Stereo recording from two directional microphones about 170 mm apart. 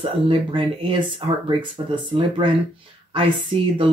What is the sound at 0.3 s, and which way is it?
Speech, 30° right (ahead or behind).